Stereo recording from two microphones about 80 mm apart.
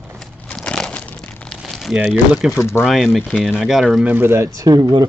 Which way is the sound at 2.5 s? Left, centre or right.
Left.